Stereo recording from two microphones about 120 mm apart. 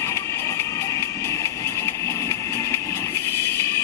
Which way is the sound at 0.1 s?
20° left (ahead or behind).